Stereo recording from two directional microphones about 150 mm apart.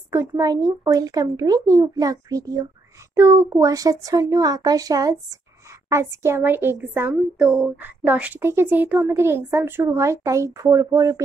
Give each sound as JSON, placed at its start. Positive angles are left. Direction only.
{"t": 0.1, "sound": "speech", "side_deg": -20}